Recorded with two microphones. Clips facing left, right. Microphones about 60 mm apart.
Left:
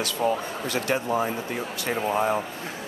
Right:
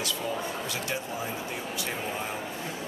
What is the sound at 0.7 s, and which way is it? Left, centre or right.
A man's voice, left.